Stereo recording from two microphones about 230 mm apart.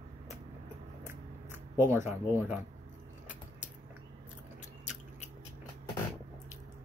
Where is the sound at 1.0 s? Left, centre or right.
Centre.